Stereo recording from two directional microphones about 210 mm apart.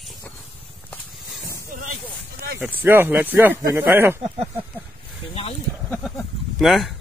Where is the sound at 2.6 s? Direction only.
10° right (ahead or behind).